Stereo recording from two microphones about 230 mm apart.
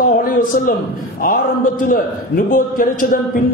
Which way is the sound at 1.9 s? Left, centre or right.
Left.